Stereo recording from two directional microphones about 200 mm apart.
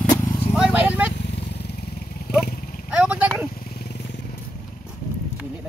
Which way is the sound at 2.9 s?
5° right (ahead or behind).